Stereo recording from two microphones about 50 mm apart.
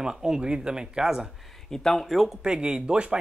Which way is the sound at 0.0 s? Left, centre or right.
Centre.